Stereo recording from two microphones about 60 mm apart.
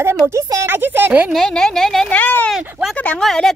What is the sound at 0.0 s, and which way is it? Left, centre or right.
A woman's voice, right.